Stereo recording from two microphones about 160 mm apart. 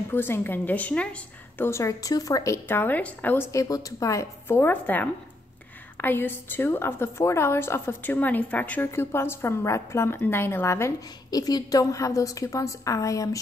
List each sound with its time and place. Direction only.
0.1 s a woman's voice: 15° left (ahead or behind)